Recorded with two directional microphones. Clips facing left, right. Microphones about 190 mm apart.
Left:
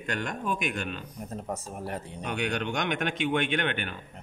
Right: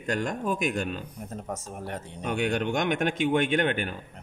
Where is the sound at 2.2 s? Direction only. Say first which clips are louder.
Right 4 dB; 45° right (ahead or behind).